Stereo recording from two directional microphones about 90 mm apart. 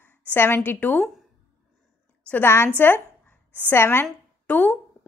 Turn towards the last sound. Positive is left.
turn(degrees=20)  # may be behind; listen again after turning